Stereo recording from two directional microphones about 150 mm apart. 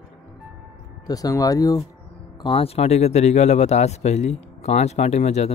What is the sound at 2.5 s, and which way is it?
Speech, 40° left (ahead or behind).